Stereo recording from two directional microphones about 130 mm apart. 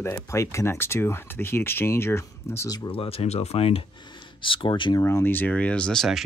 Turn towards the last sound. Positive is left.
turn(degrees=0)  # may be behind; listen again after turning